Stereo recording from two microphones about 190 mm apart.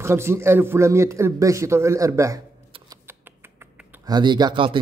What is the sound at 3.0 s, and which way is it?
Finger snapping, 10° right (ahead or behind).